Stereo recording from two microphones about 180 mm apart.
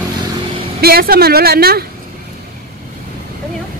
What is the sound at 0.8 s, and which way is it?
A woman's voice, 60° right (ahead or behind).